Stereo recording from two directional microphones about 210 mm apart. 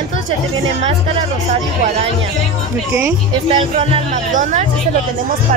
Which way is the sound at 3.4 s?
30° right (ahead or behind).